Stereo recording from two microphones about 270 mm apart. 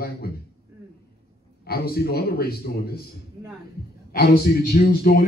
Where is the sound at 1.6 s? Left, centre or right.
Left.